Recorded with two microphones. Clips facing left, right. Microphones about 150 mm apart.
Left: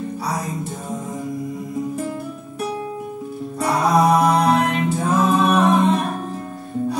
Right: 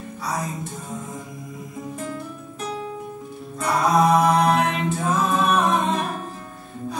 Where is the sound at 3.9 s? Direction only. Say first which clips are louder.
Left 1 dB; centre (ahead or behind).